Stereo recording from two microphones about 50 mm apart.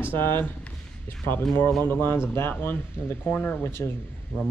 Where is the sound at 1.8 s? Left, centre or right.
Left.